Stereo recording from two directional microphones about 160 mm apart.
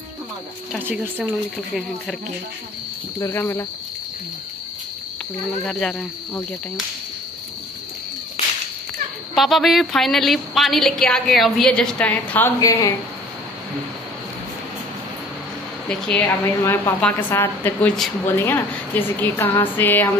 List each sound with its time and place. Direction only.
1.1 s a woman's voice: centre (ahead or behind)
3.2 s speech: 20° left (ahead or behind)
5.6 s a woman's voice: 5° left (ahead or behind)
9.3 s a woman's voice: centre (ahead or behind)
12.5 s speech: 20° left (ahead or behind)
16.3 s speech: 15° left (ahead or behind)